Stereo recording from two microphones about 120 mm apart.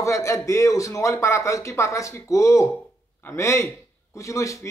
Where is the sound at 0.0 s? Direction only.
25° left (ahead or behind).